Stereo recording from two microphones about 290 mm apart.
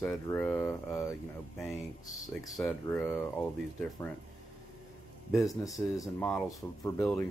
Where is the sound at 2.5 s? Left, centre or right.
Centre.